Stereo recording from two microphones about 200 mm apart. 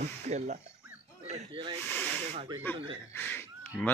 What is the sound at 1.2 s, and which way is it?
Snake, 30° right (ahead or behind).